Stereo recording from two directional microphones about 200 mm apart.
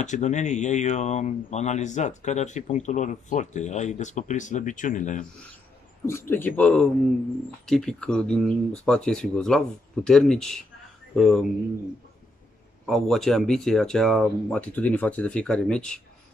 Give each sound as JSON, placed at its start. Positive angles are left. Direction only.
{"t": 0.0, "sound": "speech", "side_deg": 35}
{"t": 6.0, "sound": "speech", "side_deg": 10}
{"t": 12.8, "sound": "speech", "side_deg": 0}